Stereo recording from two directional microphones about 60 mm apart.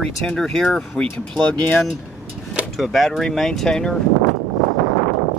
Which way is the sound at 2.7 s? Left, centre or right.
Centre.